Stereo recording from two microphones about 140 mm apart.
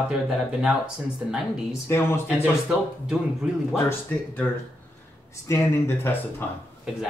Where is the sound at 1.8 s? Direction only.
20° left (ahead or behind).